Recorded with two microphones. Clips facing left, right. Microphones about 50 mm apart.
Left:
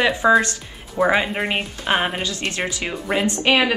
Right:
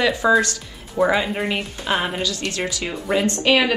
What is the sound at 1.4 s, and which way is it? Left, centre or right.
Speech, left.